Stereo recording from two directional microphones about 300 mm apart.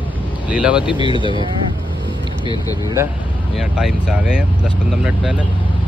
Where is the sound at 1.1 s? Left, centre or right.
Centre.